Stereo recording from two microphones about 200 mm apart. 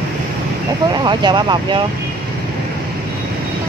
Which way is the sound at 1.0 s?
20° right (ahead or behind).